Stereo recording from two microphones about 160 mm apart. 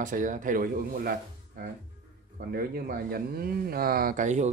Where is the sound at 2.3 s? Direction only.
70° right (ahead or behind).